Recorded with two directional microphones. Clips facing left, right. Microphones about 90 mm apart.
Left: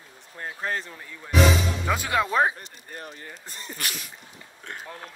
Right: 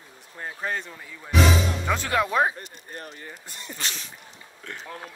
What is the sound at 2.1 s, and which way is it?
Speech, 30° left (ahead or behind).